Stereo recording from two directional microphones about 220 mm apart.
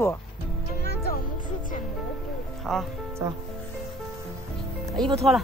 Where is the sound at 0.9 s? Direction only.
45° left (ahead or behind).